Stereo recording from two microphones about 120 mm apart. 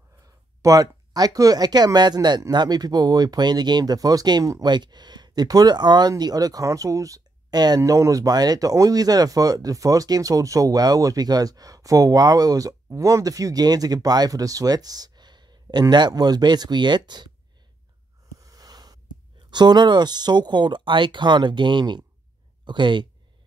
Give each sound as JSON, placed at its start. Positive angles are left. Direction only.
{"t": 0.6, "sound": "speech", "side_deg": -30}
{"t": 18.4, "sound": "a sound", "side_deg": -30}
{"t": 19.5, "sound": "speech", "side_deg": -35}